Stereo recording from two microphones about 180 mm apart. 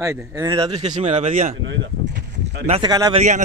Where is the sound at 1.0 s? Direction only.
40° right (ahead or behind).